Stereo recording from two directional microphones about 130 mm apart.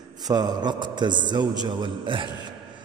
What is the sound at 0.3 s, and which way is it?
A man's voice, 30° right (ahead or behind).